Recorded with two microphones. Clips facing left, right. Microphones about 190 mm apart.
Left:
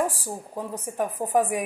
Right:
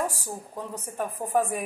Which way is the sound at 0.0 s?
15° left (ahead or behind).